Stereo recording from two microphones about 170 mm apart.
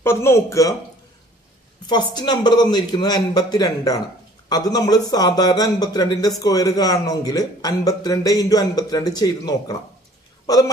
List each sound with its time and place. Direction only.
0.0 s a man's voice: 15° left (ahead or behind)
1.9 s speech: 25° left (ahead or behind)